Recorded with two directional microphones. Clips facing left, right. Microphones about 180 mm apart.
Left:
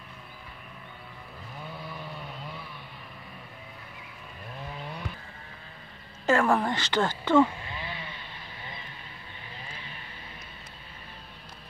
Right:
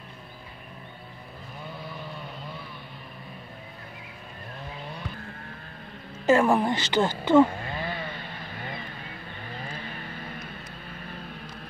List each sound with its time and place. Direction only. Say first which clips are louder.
6.2 s a woman's voice: right 3 dB; 20° right (ahead or behind)
7.5 s a sound: right 6 dB; 50° right (ahead or behind)
9.5 s vehicle: right 7 dB; 50° right (ahead or behind)